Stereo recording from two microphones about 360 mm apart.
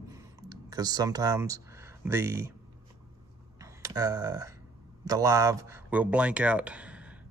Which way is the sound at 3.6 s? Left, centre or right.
Centre.